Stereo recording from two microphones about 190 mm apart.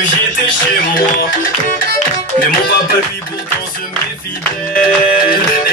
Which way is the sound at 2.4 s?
50° left (ahead or behind).